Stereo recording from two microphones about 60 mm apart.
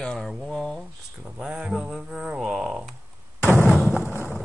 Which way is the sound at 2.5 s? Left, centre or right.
Centre.